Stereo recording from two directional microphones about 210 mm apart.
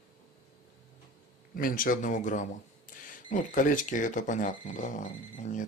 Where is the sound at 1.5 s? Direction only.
40° left (ahead or behind).